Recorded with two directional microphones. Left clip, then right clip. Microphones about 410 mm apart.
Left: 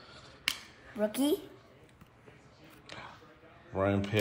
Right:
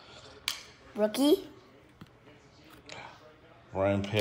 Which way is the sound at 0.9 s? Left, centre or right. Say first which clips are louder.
Right 5 dB; right.